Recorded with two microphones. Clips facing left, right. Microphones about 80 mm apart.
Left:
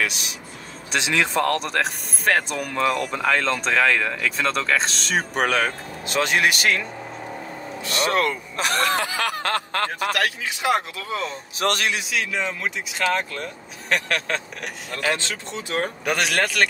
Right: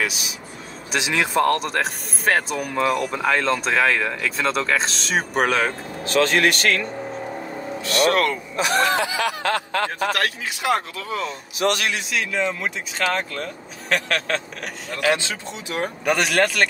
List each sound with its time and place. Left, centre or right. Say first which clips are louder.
0.0 s speech: even; centre
6.0 s speech: right 3 dB; centre
7.8 s speech: right 3 dB; left
8.5 s snicker: right 3 dB; left
10.2 s speech: even; centre
11.2 s speech: right 3 dB; left
12.1 s speech: right 2 dB; centre
15.0 s speech: right 4 dB; centre
16.1 s speech: right 4 dB; centre